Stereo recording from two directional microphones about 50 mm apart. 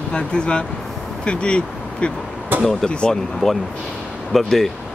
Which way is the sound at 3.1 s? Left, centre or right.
Centre.